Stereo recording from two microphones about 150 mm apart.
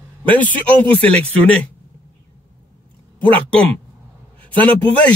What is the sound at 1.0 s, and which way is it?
Speech, 10° left (ahead or behind).